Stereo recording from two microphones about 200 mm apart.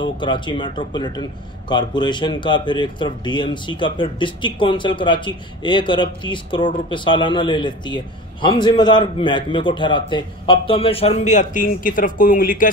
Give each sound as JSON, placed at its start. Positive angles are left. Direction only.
{"t": 0.0, "sound": "speech", "side_deg": 25}